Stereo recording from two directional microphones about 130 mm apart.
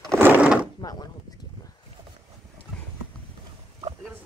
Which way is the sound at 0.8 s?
30° left (ahead or behind).